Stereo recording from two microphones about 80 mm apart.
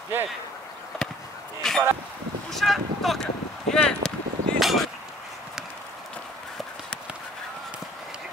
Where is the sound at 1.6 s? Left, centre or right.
Centre.